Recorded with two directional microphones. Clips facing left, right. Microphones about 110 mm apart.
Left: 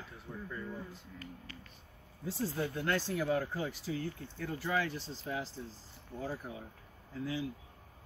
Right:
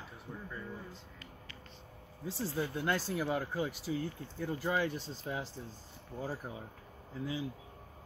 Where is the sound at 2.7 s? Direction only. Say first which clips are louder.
Even; 15° right (ahead or behind).